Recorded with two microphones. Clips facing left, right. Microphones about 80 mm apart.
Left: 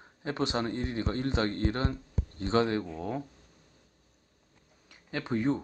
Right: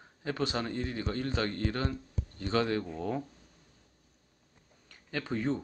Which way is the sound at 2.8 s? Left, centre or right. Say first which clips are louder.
Right 1 dB; centre.